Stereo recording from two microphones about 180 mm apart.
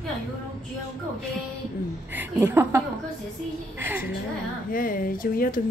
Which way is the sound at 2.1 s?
15° right (ahead or behind).